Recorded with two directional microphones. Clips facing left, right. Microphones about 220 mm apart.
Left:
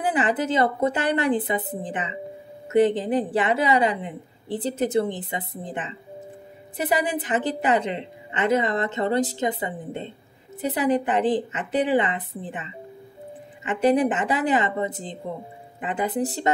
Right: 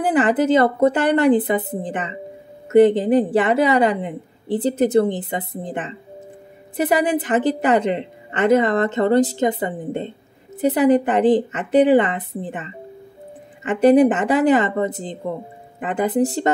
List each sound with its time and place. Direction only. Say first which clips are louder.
0.1 s a woman's voice: right 9 dB; 50° right (ahead or behind)
13.7 s speech: right 7 dB; 50° right (ahead or behind)